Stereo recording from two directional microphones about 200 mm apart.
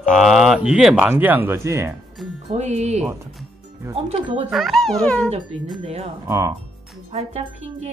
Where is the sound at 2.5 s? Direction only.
35° right (ahead or behind).